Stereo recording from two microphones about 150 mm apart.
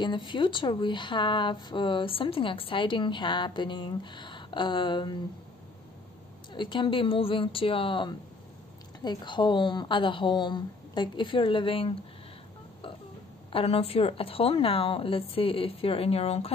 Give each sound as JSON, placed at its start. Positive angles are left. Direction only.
{"t": 0.0, "sound": "speech", "side_deg": 30}
{"t": 6.5, "sound": "speech", "side_deg": 30}
{"t": 13.5, "sound": "speech", "side_deg": 40}